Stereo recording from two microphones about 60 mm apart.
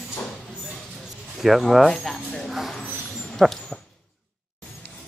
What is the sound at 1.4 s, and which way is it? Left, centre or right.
Speech, centre.